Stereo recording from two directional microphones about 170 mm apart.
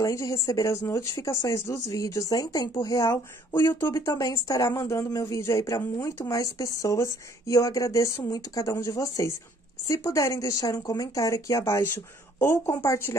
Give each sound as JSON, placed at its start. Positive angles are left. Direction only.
{"t": 0.0, "sound": "speech", "side_deg": 20}